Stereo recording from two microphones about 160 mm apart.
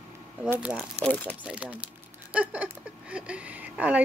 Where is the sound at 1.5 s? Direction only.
5° right (ahead or behind).